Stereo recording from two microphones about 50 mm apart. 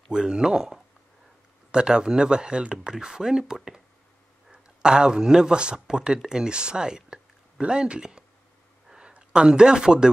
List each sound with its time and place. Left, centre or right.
0.1 s speech: centre